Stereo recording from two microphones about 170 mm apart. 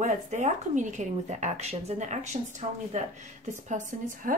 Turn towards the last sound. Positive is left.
turn(degrees=-50)  # may be behind; listen again after turning